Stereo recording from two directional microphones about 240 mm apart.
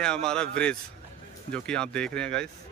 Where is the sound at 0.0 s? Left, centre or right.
Centre.